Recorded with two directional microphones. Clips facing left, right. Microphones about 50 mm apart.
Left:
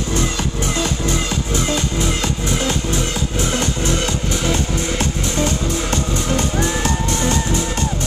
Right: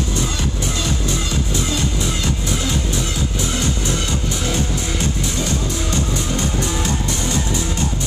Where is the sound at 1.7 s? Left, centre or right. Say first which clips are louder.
Left 2 dB; left.